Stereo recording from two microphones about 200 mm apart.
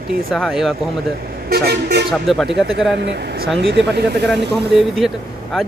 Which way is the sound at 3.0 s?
55° right (ahead or behind).